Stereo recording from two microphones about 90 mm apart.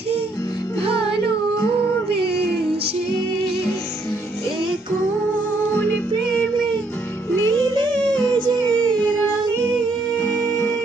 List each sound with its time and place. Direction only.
7.2 s music: 25° left (ahead or behind)
8.1 s music: 15° left (ahead or behind)
8.7 s child singing: 10° left (ahead or behind)